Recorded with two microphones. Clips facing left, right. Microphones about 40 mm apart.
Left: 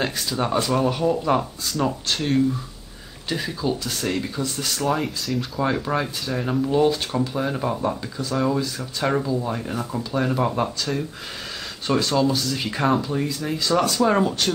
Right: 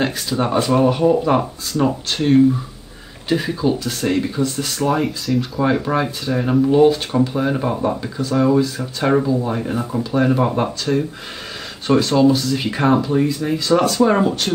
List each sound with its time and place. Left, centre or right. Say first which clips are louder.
0.0 s speech: right 4 dB; centre
4.4 s speech: right 5 dB; centre